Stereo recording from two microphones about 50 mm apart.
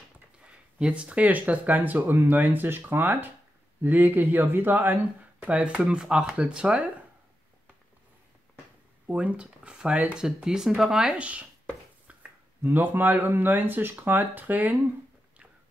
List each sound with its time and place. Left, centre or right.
0.5 s speech: centre; by 3.3 s right
3.8 s speech: right
5.5 s speech: right
9.0 s speech: right; by 11.1 s centre
11.1 s speech: right
12.1 s a sound: right
12.6 s speech: right